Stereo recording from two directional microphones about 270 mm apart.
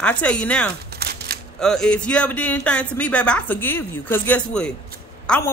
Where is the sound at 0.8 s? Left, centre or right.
Right.